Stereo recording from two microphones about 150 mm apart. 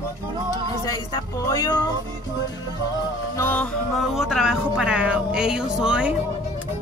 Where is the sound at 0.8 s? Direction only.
25° left (ahead or behind).